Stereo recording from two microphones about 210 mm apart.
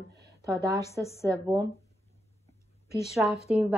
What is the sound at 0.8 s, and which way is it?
Speech, 15° left (ahead or behind).